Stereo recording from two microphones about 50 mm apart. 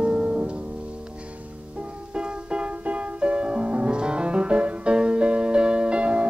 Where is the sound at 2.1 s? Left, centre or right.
Centre.